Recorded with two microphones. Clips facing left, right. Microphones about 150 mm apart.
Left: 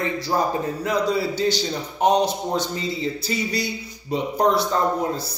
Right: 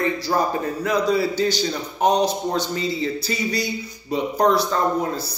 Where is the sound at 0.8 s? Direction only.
25° left (ahead or behind).